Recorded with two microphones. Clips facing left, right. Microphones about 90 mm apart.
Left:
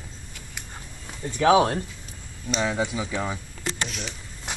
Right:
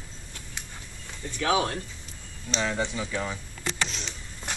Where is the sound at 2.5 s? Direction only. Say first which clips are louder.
Left 3 dB; 10° left (ahead or behind).